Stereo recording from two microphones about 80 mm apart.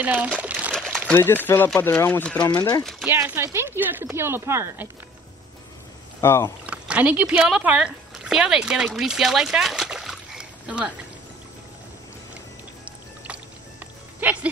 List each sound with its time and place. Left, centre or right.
0.0 s speech: centre
0.4 s crumpling: centre
0.7 s crumpling: centre
1.1 s speech: left
2.5 s speech: left
2.8 s speech: centre
3.3 s speech: right
6.2 s speech: left
6.6 s speech: centre
14.2 s music: right